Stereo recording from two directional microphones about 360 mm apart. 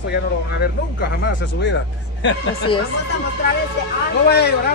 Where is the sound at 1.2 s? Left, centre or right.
Left.